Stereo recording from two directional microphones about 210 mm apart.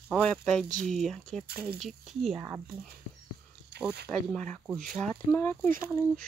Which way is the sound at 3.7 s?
55° right (ahead or behind).